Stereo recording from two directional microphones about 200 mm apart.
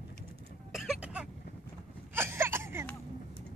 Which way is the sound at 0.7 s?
Centre (ahead or behind).